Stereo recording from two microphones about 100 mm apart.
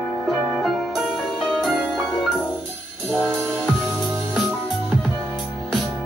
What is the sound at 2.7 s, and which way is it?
Brass instrument, 10° right (ahead or behind).